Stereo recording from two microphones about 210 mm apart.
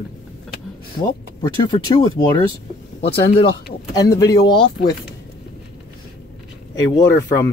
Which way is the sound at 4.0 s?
15° left (ahead or behind).